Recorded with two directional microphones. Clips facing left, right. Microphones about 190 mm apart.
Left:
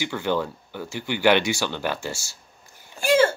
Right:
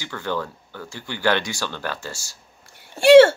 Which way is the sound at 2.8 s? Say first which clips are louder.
Right 9 dB; 70° right (ahead or behind).